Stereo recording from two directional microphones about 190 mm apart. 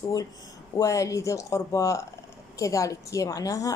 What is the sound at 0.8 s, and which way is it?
A woman's voice, 15° left (ahead or behind).